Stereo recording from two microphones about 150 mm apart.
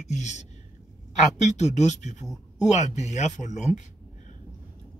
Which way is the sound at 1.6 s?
50° left (ahead or behind).